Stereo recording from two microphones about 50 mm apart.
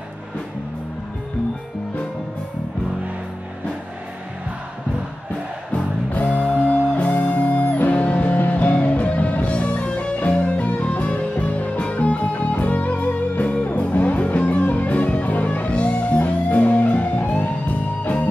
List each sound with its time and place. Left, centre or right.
5.7 s music: left
9.8 s music: centre
10.2 s music: left